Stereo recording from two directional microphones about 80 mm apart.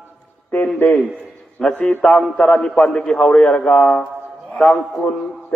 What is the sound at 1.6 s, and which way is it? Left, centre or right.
A man's voice, centre.